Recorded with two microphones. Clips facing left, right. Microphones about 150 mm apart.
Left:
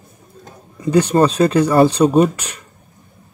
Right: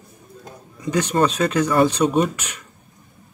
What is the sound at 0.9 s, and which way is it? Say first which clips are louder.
Speech: left 6 dB; 35° left (ahead or behind).